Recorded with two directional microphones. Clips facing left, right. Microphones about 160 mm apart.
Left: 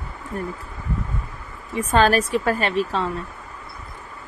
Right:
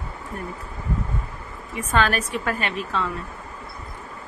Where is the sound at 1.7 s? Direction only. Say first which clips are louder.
Left 5 dB; 35° left (ahead or behind).